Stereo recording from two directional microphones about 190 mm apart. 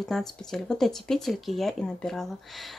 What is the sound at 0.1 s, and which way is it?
A woman's voice, centre (ahead or behind).